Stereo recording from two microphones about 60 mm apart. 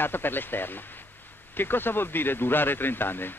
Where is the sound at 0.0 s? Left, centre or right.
Left.